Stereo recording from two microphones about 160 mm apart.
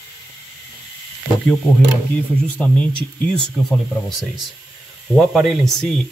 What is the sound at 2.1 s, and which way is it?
Speech, 5° left (ahead or behind).